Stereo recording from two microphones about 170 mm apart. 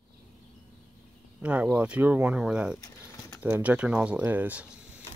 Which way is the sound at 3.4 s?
10° right (ahead or behind).